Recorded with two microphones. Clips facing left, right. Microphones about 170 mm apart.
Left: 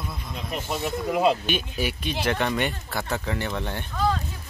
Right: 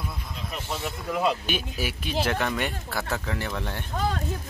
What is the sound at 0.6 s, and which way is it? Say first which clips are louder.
Speech: left 5 dB; 15° left (ahead or behind).